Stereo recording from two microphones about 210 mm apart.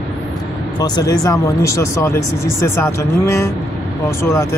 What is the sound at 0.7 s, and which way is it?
Speech, 20° left (ahead or behind).